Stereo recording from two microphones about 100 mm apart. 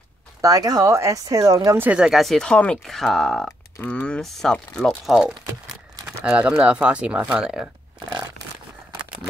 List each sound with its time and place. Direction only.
0.4 s speech: 40° right (ahead or behind)
1.8 s speech: 15° right (ahead or behind)
2.0 s speech: centre (ahead or behind)
6.2 s speech: 10° right (ahead or behind)